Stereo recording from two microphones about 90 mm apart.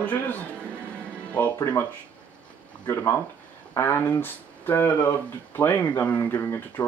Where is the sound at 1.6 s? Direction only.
25° left (ahead or behind).